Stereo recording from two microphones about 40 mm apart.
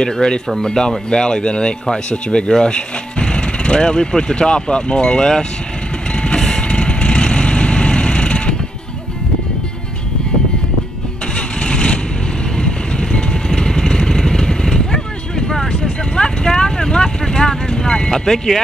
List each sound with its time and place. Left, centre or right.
0.0 s speech: left
6.1 s train: left
6.7 s vehicle: left
11.3 s vehicle: left; by 18.6 s centre